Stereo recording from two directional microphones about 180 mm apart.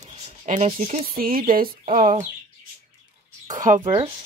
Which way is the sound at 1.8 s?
45° right (ahead or behind).